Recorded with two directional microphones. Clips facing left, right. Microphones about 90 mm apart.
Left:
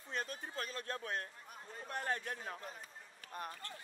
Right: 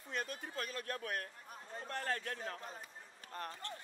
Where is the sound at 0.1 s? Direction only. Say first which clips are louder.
Even; 35° left (ahead or behind); by 3.5 s 15° left (ahead or behind).